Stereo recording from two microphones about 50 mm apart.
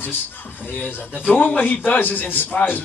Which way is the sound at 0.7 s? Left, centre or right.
Left.